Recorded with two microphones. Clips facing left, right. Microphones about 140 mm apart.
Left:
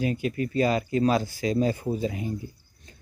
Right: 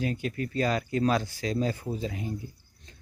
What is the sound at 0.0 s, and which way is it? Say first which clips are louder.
Speech: left 4 dB; 5° left (ahead or behind).